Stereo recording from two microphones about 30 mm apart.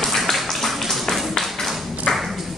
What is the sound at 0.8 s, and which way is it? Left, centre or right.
Music, centre.